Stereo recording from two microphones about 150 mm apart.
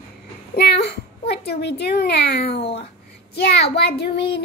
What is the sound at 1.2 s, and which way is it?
A child's voice, 90° left.